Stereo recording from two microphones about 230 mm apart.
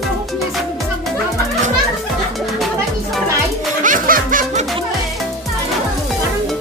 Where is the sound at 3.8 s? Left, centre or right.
Right.